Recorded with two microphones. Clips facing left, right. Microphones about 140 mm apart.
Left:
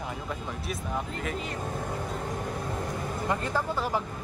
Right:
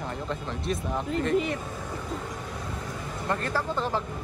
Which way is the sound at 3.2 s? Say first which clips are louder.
Right 1 dB; 15° left (ahead or behind).